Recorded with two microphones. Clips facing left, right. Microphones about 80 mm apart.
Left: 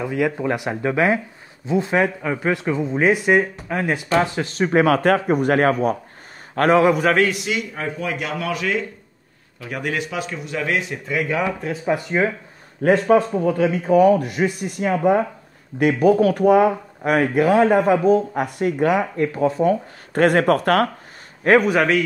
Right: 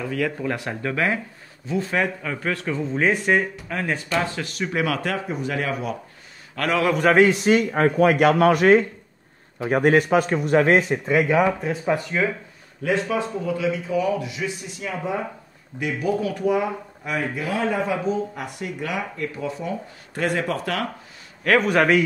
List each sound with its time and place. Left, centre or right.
0.0 s speech: centre
4.6 s a man's voice: left
7.2 s a man's voice: right
11.2 s speech: centre
12.8 s speech: left
20.2 s speech: left
21.5 s speech: centre